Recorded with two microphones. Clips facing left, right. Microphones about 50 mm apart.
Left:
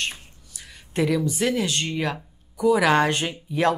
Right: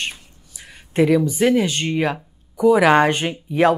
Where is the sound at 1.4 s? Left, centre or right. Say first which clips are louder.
Right 6 dB; centre.